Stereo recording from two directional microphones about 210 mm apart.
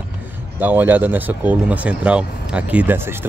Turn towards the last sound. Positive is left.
turn(degrees=-10)  # may be behind; listen again after turning